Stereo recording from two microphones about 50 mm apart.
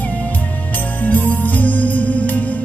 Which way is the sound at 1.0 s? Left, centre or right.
Left.